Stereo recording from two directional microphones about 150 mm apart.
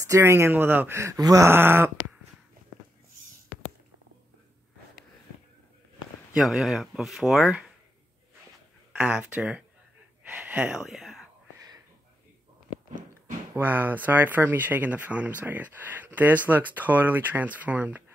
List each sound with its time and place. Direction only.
0.0 s speech: 20° right (ahead or behind)
6.3 s speech: centre (ahead or behind)
8.9 s speech: 10° right (ahead or behind)
10.3 s a sound: 10° right (ahead or behind)
13.6 s speech: 10° right (ahead or behind)